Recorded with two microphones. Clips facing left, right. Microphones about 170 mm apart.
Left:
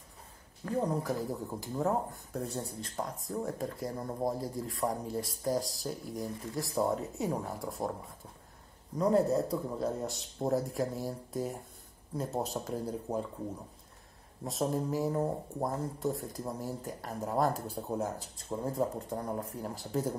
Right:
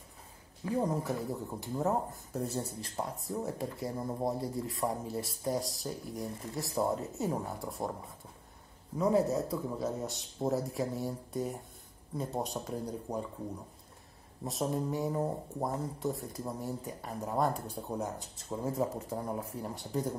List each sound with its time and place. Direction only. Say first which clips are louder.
0.7 s speech: even; centre (ahead or behind)
8.9 s speech: left 1 dB; centre (ahead or behind)
14.4 s speech: left 1 dB; centre (ahead or behind)